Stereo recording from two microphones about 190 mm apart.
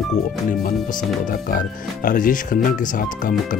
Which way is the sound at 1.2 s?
45° left (ahead or behind).